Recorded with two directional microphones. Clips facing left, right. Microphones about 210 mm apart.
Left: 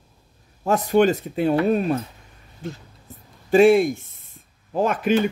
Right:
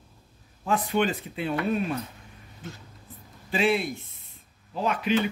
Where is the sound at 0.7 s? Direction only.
40° left (ahead or behind).